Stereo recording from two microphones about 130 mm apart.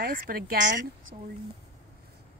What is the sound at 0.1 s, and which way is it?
Speech, 90° right.